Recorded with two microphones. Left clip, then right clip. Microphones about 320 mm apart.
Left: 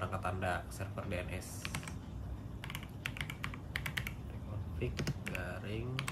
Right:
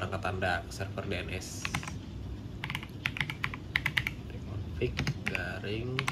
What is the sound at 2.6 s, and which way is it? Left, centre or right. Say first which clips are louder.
Typing: right 9 dB; centre.